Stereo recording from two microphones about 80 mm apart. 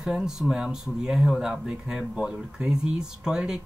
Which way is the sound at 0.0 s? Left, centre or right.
Centre.